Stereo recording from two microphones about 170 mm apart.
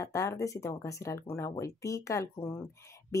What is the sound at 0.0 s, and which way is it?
Speech, 20° left (ahead or behind).